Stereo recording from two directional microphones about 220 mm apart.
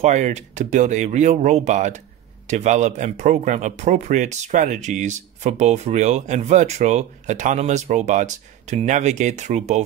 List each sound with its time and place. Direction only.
0.0 s speech: 30° right (ahead or behind)